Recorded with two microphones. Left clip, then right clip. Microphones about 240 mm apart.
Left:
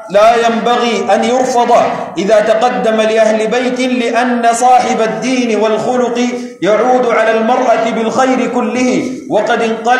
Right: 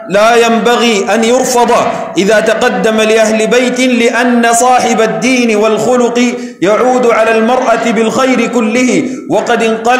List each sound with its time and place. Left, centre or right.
0.1 s a man's voice: right